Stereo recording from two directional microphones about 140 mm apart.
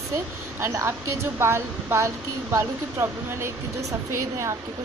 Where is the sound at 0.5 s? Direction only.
20° right (ahead or behind).